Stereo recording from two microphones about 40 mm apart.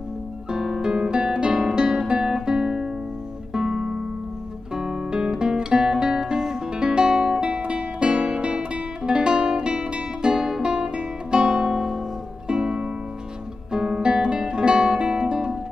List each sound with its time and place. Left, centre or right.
0.5 s guitar: centre
10.3 s guitar: centre
12.4 s music: right
13.7 s guitar: centre